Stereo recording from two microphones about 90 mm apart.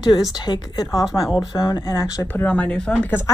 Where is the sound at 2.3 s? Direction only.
20° left (ahead or behind).